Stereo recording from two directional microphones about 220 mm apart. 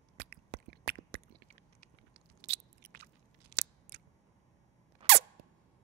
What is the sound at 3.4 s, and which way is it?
Scissors, 50° right (ahead or behind).